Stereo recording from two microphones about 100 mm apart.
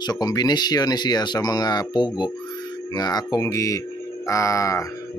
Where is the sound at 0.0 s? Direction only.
40° left (ahead or behind).